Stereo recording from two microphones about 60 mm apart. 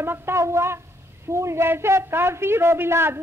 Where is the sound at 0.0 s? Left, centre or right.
Right.